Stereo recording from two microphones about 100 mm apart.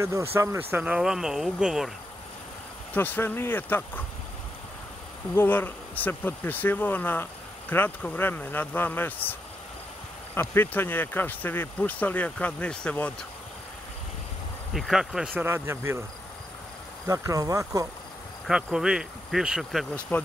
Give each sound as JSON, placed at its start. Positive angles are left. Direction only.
{"t": 0.0, "sound": "speech", "side_deg": -25}
{"t": 0.7, "sound": "speech", "side_deg": -10}
{"t": 2.9, "sound": "speech", "side_deg": 20}
{"t": 5.3, "sound": "speech", "side_deg": 20}
{"t": 14.7, "sound": "speech", "side_deg": 0}
{"t": 15.3, "sound": "speech", "side_deg": -25}
{"t": 17.0, "sound": "speech", "side_deg": -35}
{"t": 18.5, "sound": "speech", "side_deg": -10}
{"t": 20.1, "sound": "speech", "side_deg": 20}